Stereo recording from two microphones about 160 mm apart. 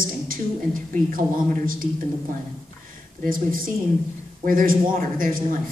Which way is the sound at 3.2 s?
60° right (ahead or behind).